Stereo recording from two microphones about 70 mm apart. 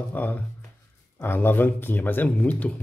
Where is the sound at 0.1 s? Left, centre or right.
Left.